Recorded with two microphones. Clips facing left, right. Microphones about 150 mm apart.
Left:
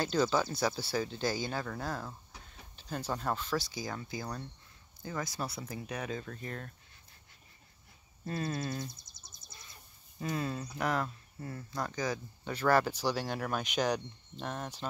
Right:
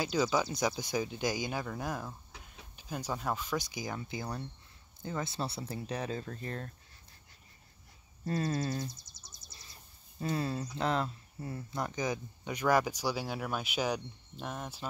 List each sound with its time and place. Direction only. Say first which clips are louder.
0.0 s speech: left 1 dB; 10° right (ahead or behind); by 6.7 s 35° right (ahead or behind)
8.3 s speech: right 3 dB; 35° right (ahead or behind)
9.1 s a sound: right 1 dB; 55° left (ahead or behind)
10.2 s speech: right 2 dB; 30° right (ahead or behind); by 14.9 s 5° right (ahead or behind)